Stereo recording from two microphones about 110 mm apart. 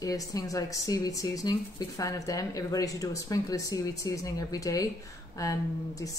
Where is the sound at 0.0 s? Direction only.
30° left (ahead or behind).